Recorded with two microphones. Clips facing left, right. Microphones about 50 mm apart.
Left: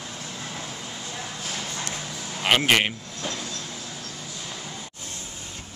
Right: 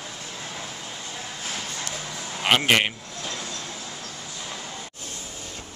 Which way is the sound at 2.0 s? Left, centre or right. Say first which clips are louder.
Right 2 dB; centre.